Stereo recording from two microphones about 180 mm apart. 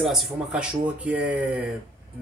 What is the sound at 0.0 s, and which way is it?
Speech, centre (ahead or behind).